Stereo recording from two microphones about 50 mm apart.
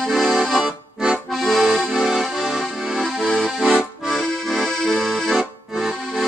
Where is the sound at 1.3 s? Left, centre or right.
Centre.